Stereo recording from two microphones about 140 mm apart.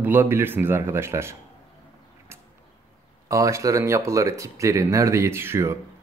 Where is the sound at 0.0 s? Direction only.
15° right (ahead or behind).